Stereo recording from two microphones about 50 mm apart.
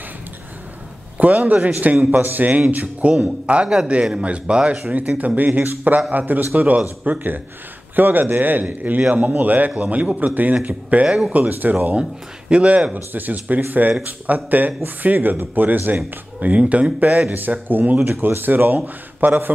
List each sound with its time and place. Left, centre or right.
1.1 s a man's voice: right
4.9 s a man's voice: right
12.0 s a man's voice: right
17.3 s a man's voice: right